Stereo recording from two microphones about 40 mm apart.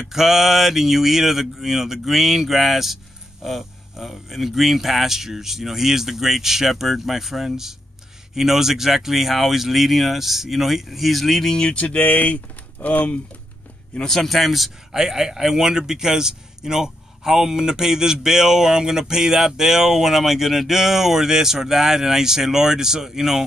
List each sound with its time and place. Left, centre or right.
0.0 s a man's voice: centre
11.7 s a sound: left
14.0 s speech: centre
14.9 s a man's voice: centre